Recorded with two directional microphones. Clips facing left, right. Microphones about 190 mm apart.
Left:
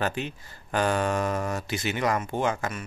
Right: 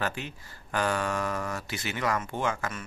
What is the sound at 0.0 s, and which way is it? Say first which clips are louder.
Speech: left 4 dB; 20° left (ahead or behind).